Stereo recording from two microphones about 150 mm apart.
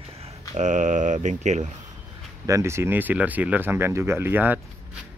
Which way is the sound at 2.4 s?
20° right (ahead or behind).